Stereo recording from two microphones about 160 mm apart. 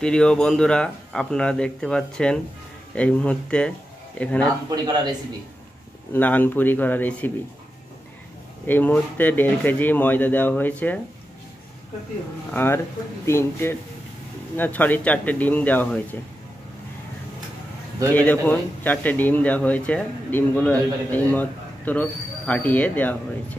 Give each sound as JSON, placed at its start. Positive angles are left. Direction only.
{"t": 0.0, "sound": "speech", "side_deg": 5}
{"t": 4.6, "sound": "speech", "side_deg": -25}
{"t": 6.1, "sound": "speech", "side_deg": 10}
{"t": 8.6, "sound": "speech", "side_deg": 10}
{"t": 12.4, "sound": "speech", "side_deg": 15}
{"t": 18.1, "sound": "speech", "side_deg": 10}